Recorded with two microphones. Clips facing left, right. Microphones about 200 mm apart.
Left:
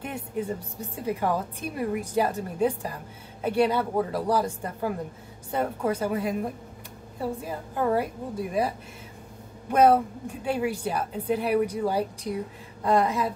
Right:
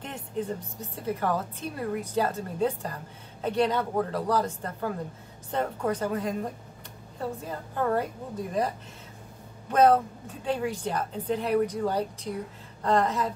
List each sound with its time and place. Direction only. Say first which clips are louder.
0.0 s a woman's voice: left 2 dB; 10° left (ahead or behind)